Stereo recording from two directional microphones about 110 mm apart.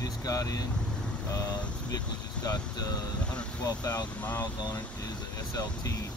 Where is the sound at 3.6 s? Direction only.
35° left (ahead or behind).